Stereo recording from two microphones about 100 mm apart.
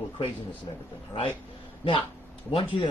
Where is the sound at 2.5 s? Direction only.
55° left (ahead or behind).